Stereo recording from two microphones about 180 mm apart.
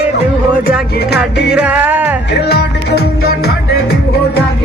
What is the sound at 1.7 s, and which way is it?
Music, 10° right (ahead or behind).